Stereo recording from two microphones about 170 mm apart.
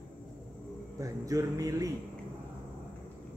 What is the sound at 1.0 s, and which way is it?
Speech, 20° right (ahead or behind).